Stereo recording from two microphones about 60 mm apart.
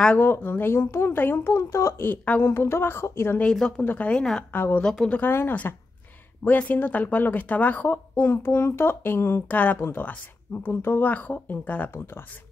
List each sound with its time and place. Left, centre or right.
0.2 s a child's voice: left
1.2 s a child's voice: left
1.5 s speech: left
2.4 s a child's voice: left
3.5 s speech: centre
3.8 s a child's voice: left
4.1 s speech: centre
4.5 s a child's voice: left
4.8 s speech: centre
5.5 s speech: left
8.2 s a child's voice: left
9.5 s a child's voice: left